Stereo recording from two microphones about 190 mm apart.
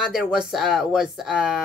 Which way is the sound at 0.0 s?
5° right (ahead or behind).